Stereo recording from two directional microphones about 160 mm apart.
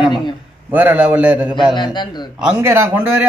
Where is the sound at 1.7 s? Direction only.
30° left (ahead or behind).